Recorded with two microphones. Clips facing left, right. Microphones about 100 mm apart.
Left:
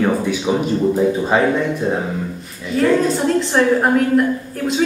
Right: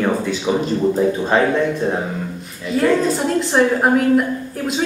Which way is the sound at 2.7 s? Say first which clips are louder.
Left 1 dB; centre (ahead or behind).